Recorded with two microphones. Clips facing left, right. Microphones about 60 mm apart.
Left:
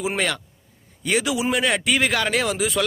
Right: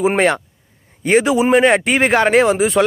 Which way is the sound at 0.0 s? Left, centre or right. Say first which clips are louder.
Right 9 dB; right.